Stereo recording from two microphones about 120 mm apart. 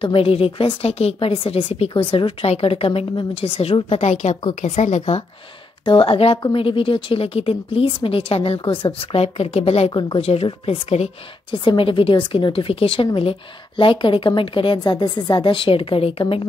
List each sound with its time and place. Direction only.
0.0 s a woman's voice: 50° left (ahead or behind); by 5.2 s 75° left (ahead or behind)
5.9 s a woman's voice: 50° left (ahead or behind)
9.9 s speech: 45° left (ahead or behind)
11.5 s a woman's voice: 45° left (ahead or behind)